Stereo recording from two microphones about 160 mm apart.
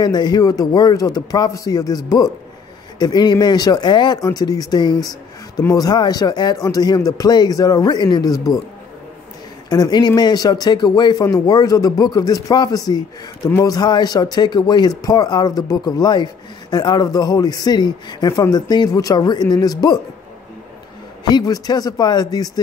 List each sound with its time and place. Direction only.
0.0 s speech: 25° left (ahead or behind)
9.7 s speech: 25° left (ahead or behind)
21.2 s speech: 25° left (ahead or behind)